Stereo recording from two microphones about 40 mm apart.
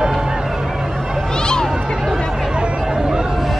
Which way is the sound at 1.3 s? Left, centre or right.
Centre.